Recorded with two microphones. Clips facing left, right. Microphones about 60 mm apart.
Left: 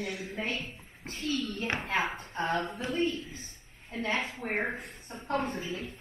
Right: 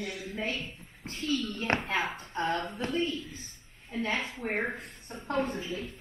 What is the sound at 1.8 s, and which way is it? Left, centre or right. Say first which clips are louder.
A man's voice: left 1 dB; centre.